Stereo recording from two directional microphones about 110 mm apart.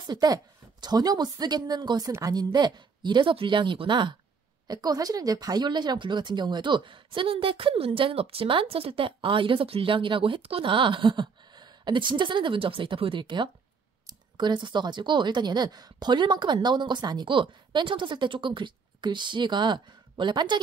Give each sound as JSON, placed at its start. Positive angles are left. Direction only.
{"t": 0.0, "sound": "a woman's voice", "side_deg": -40}
{"t": 4.6, "sound": "a woman's voice", "side_deg": -35}